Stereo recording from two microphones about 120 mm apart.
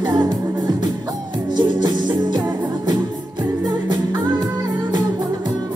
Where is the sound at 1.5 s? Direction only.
35° right (ahead or behind).